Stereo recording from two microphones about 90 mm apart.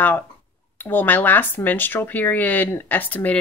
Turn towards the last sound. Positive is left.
turn(degrees=15)  # may be behind; listen again after turning